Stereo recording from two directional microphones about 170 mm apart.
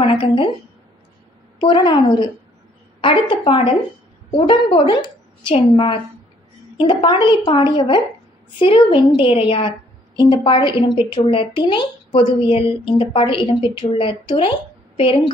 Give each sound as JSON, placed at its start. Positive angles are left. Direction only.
{"t": 1.6, "sound": "a woman's voice", "side_deg": 30}